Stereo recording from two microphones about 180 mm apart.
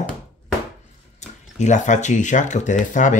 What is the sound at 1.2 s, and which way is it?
Speech, 40° left (ahead or behind).